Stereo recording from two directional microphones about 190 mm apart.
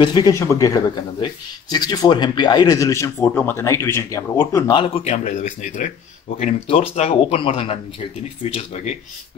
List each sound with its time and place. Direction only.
0.0 s speech: 20° left (ahead or behind)